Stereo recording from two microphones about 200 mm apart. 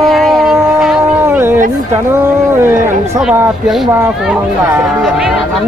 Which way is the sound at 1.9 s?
10° right (ahead or behind).